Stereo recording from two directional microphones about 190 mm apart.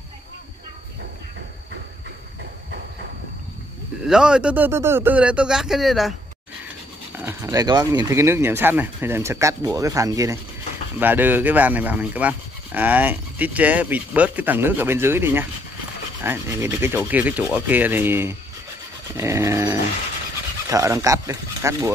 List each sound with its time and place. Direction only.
4.0 s speech: 5° right (ahead or behind)
7.2 s a sound: 15° right (ahead or behind)
7.9 s speech: 15° right (ahead or behind)